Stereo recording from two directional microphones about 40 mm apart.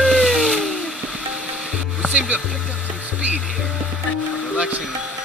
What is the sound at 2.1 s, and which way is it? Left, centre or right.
Music, right.